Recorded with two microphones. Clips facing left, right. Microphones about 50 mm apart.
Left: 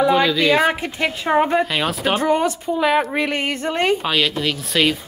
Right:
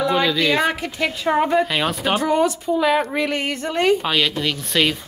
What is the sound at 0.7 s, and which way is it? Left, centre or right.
A woman's voice, left.